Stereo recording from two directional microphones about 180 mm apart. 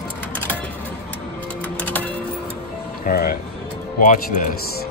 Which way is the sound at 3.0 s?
55° left (ahead or behind).